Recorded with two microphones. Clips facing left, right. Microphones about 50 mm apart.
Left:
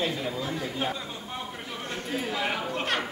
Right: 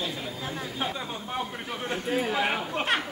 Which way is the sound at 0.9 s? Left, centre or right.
Centre.